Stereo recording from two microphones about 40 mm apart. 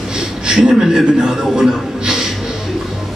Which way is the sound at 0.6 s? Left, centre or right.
Centre.